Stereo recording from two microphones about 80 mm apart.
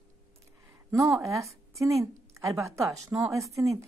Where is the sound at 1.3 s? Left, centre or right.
Right.